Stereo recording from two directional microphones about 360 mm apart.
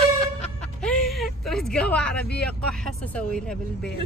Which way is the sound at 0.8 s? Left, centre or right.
Centre.